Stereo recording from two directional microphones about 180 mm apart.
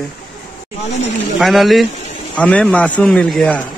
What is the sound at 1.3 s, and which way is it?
A man's voice, centre (ahead or behind).